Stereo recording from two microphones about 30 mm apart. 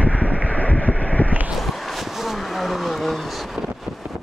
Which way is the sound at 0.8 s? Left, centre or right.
Left.